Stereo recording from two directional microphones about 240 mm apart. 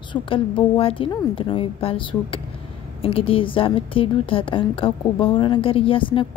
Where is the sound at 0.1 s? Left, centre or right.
Left.